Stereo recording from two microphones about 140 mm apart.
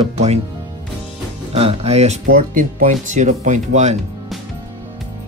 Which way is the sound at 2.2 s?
75° right (ahead or behind).